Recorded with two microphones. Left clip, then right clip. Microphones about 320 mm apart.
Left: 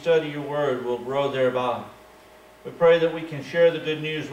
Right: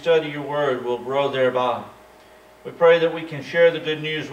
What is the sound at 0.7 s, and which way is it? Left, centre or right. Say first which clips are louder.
Speech: right 2 dB; right.